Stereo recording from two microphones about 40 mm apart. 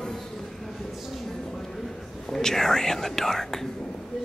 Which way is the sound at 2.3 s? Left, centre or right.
Centre.